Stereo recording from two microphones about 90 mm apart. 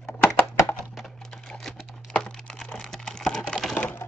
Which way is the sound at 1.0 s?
5° left (ahead or behind).